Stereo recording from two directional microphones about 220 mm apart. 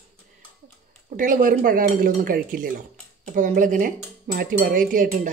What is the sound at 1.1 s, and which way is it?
Speech, 35° right (ahead or behind).